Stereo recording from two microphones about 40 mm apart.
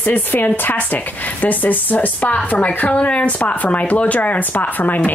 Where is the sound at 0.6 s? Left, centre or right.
Left.